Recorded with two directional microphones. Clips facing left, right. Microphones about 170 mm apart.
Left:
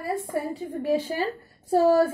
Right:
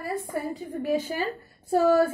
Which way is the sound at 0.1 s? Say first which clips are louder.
Left 3 dB; 30° left (ahead or behind).